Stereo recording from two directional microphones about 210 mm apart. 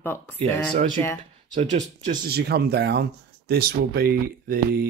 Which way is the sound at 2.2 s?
50° right (ahead or behind).